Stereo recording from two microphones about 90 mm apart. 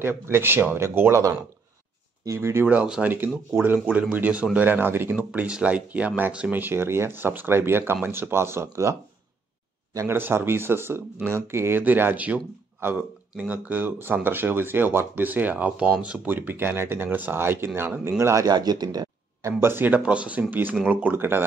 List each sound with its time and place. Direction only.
0.0 s speech: 25° right (ahead or behind)
2.2 s speech: 30° right (ahead or behind)
2.6 s speech: 15° right (ahead or behind)
9.9 s speech: 25° right (ahead or behind); by 19.5 s 45° right (ahead or behind)
19.6 s speech: 25° right (ahead or behind)